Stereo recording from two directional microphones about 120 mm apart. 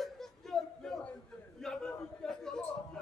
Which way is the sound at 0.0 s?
5° left (ahead or behind).